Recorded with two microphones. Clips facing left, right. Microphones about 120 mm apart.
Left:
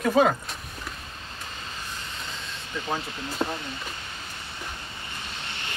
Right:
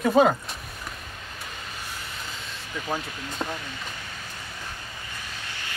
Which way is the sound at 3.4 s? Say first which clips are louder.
Left 3 dB; 20° left (ahead or behind).